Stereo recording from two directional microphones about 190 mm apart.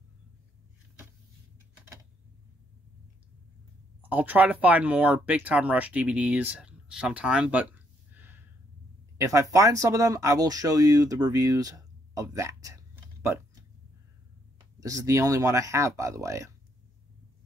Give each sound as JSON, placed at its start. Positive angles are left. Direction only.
{"t": 4.0, "sound": "speech", "side_deg": -10}
{"t": 8.1, "sound": "a sound", "side_deg": -10}
{"t": 9.2, "sound": "speech", "side_deg": -15}
{"t": 14.8, "sound": "speech", "side_deg": -15}